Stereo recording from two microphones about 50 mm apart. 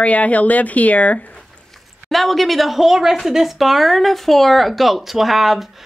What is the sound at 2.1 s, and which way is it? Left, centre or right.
A woman's voice, centre.